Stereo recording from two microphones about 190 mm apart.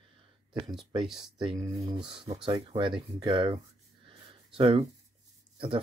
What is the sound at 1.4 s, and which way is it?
Speech, 25° right (ahead or behind).